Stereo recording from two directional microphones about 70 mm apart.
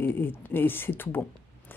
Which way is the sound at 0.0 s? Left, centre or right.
Left.